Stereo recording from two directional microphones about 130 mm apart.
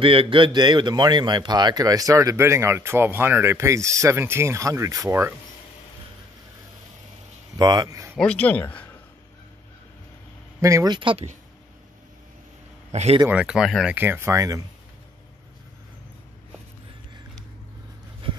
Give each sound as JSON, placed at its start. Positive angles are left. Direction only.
{"t": 0.0, "sound": "speech", "side_deg": -45}
{"t": 7.5, "sound": "speech", "side_deg": -30}
{"t": 8.2, "sound": "speech", "side_deg": 10}
{"t": 10.6, "sound": "speech", "side_deg": -25}
{"t": 11.0, "sound": "speech", "side_deg": -40}
{"t": 12.9, "sound": "speech", "side_deg": -55}
{"t": 13.3, "sound": "speech", "side_deg": -10}
{"t": 13.9, "sound": "speech", "side_deg": -15}